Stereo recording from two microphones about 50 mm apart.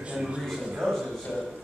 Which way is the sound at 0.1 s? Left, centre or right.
Centre.